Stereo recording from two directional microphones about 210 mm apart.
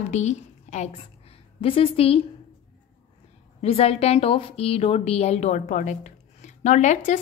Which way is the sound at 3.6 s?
30° left (ahead or behind).